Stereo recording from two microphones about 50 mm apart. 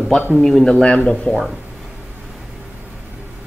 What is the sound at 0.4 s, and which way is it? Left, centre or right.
Speech, centre.